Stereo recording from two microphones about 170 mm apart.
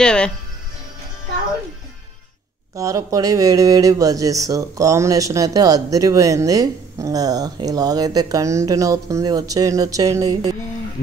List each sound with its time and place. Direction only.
0.0 s speech: 5° left (ahead or behind)
2.7 s speech: 20° right (ahead or behind)